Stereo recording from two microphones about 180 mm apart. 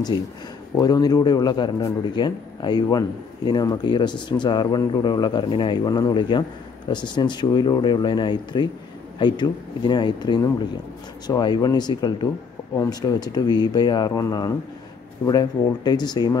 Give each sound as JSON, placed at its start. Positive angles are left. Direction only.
{"t": 0.7, "sound": "a man's voice", "side_deg": 20}